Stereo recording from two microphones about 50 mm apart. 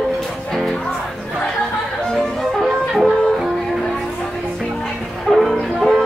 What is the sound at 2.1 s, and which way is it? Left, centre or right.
Music, centre.